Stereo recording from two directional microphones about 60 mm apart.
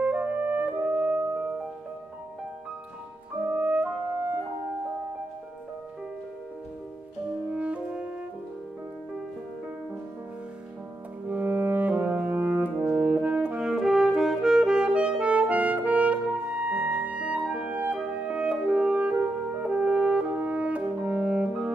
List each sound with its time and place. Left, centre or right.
0.0 s music: right
3.5 s music: right
7.4 s music: right
11.2 s brass instrument: right
13.6 s music: centre; by 17.9 s right
17.9 s clarinet: centre
19.7 s french horn: centre